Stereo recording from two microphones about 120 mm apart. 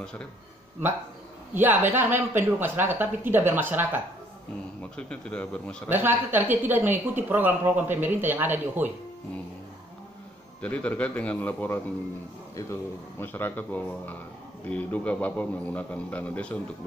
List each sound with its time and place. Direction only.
0.0 s a man's voice: 10° left (ahead or behind)
1.5 s speech: 15° right (ahead or behind)
4.9 s a man's voice: 10° left (ahead or behind)
5.9 s speech: 15° right (ahead or behind)
10.6 s a man's voice: 10° left (ahead or behind)
13.2 s a man's voice: 15° left (ahead or behind)